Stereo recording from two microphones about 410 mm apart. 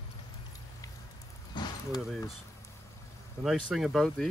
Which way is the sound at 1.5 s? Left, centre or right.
Centre.